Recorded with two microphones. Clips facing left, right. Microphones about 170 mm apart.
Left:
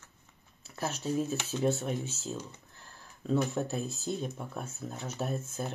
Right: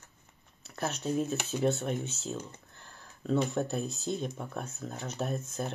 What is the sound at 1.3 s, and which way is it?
Speech, 10° right (ahead or behind).